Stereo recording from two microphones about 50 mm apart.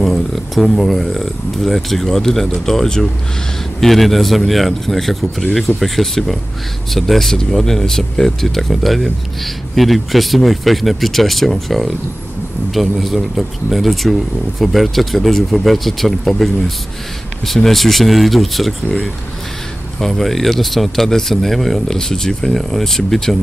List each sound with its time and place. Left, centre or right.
0.0 s speech: centre
20.0 s speech: centre